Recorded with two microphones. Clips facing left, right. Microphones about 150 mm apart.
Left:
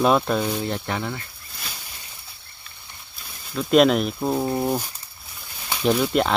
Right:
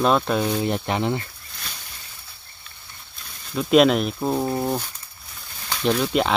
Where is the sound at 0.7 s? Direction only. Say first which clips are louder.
Right 4 dB; 20° right (ahead or behind).